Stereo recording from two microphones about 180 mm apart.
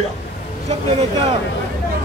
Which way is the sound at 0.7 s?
35° right (ahead or behind).